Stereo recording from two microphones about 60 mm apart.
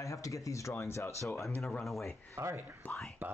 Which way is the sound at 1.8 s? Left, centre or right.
Centre.